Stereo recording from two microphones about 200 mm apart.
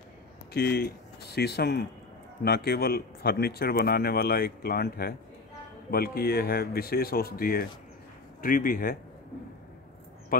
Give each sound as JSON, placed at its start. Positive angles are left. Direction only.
{"t": 0.5, "sound": "speech", "side_deg": 55}